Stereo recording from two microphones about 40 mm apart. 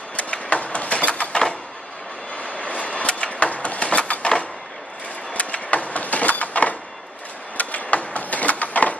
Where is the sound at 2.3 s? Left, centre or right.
Left.